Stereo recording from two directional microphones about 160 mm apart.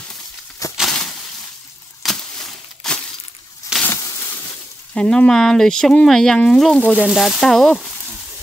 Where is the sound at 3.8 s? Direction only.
20° left (ahead or behind).